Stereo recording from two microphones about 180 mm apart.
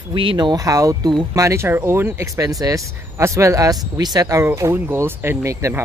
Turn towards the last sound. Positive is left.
turn(degrees=-15)  # may be behind; listen again after turning